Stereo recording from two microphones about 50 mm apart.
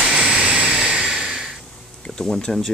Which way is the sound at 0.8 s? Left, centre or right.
Centre.